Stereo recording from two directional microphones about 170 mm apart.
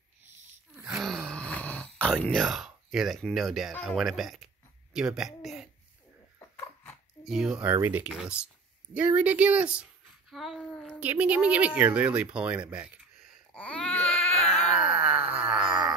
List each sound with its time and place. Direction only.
0.7 s groan: 5° right (ahead or behind)
3.7 s speech: centre (ahead or behind)
6.5 s dog: 10° left (ahead or behind)
7.2 s speech: 5° right (ahead or behind)
11.0 s speech: 10° right (ahead or behind)
13.5 s baby cry: 5° left (ahead or behind)
14.8 s wail: 35° right (ahead or behind)
15.3 s wail: 5° right (ahead or behind)